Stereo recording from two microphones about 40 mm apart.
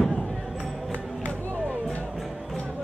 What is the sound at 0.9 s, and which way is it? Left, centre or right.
Music, left.